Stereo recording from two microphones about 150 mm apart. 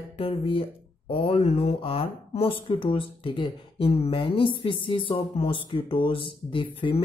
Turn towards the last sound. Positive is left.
turn(degrees=35)  # may be behind; listen again after turning